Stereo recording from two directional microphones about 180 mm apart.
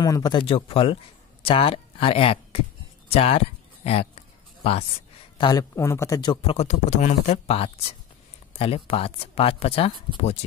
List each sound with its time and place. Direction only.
0.0 s speech: 20° left (ahead or behind)
5.4 s speech: 20° left (ahead or behind)